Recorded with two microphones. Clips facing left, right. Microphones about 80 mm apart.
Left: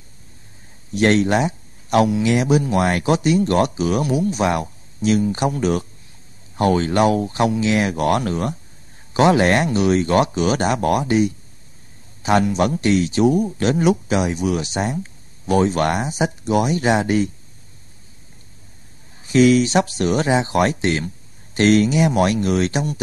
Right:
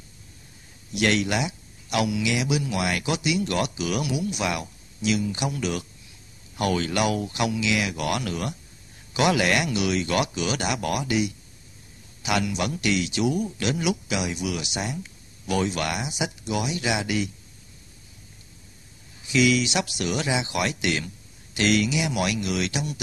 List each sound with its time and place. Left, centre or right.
0.9 s a man's voice: left
19.2 s a man's voice: left